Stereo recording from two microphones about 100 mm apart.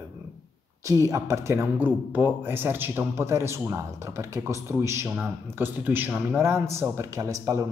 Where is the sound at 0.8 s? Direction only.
30° right (ahead or behind).